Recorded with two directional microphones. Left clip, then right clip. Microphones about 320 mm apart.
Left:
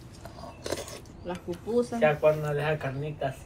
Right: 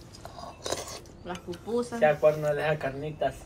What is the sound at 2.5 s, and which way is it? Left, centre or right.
Speech, right.